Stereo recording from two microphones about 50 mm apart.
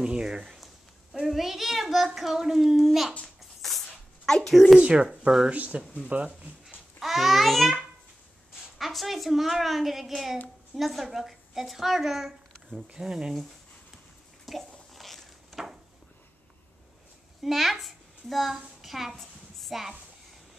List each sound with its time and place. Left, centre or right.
0.0 s a child's voice: centre
3.8 s a sound: centre
4.7 s speech: right
6.7 s a child's voice: centre
14.5 s bathtub: centre
15.0 s a sound: centre
17.4 s a woman's voice: centre